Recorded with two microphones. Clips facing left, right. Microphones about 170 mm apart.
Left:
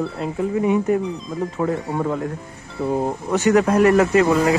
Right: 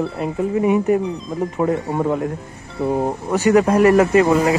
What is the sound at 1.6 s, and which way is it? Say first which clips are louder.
Speech: right 3 dB; 20° right (ahead or behind).